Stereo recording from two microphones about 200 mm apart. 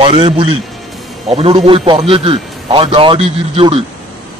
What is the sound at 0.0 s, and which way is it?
A man's voice, 25° right (ahead or behind).